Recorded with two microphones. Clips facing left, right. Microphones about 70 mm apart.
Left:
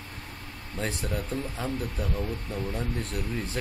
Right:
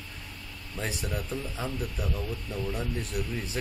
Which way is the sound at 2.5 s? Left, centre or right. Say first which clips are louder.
Right 2 dB; left.